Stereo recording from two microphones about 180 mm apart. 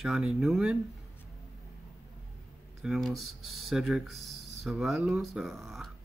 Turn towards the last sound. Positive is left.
turn(degrees=0)  # may be behind; listen again after turning